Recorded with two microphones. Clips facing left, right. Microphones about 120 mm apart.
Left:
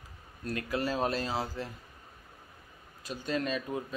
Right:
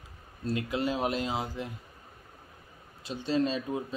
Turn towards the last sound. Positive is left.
turn(degrees=-25)  # may be behind; listen again after turning